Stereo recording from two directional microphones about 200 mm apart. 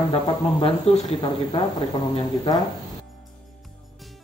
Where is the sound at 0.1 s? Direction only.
25° left (ahead or behind).